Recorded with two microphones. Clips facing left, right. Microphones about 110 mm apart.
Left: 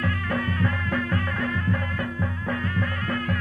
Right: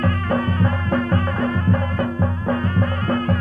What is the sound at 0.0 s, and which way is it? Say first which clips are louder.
Music: right 6 dB; 40° right (ahead or behind).